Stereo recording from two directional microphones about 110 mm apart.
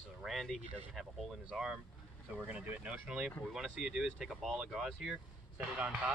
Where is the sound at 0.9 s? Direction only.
5° right (ahead or behind).